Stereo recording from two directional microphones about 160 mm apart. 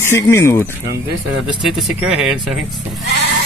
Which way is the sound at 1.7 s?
5° right (ahead or behind).